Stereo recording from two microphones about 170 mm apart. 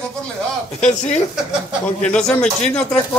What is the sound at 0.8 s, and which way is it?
Speech, 45° left (ahead or behind).